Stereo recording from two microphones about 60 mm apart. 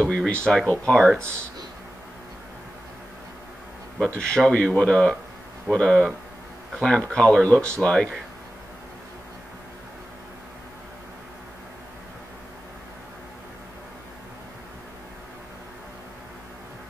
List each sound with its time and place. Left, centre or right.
0.0 s speech: centre
4.2 s speech: centre